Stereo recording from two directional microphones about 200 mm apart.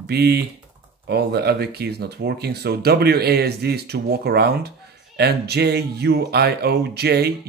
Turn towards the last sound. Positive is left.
turn(degrees=-55)  # may be behind; listen again after turning